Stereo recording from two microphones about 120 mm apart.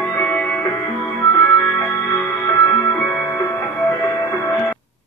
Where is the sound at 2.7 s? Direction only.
20° left (ahead or behind).